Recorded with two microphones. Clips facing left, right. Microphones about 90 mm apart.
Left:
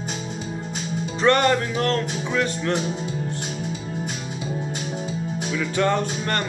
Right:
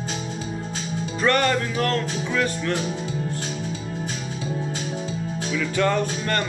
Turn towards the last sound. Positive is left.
turn(degrees=25)  # may be behind; listen again after turning